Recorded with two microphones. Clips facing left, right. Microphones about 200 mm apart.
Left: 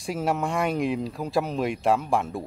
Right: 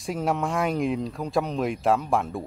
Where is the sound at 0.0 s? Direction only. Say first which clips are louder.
Even; centre (ahead or behind).